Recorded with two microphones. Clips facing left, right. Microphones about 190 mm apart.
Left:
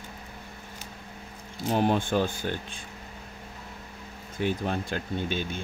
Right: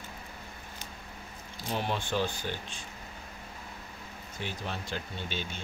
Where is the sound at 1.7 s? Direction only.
50° left (ahead or behind).